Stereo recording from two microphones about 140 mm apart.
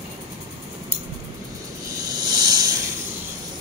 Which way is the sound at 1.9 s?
25° right (ahead or behind).